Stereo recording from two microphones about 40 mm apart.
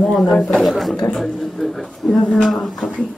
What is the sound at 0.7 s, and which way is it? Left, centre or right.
A man's voice, centre.